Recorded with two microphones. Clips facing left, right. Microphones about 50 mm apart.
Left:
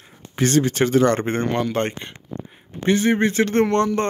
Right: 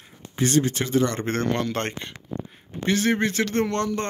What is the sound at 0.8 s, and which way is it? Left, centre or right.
Speech, left.